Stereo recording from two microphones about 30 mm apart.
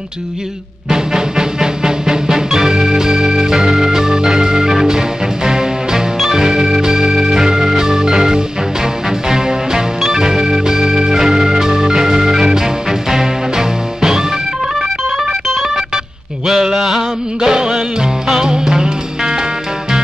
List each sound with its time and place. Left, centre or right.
0.8 s music: centre
2.5 s organ: centre
4.8 s music: right
6.3 s organ: centre
9.3 s music: centre
10.1 s organ: right
13.1 s music: centre
16.4 s a sound: centre
17.4 s music: right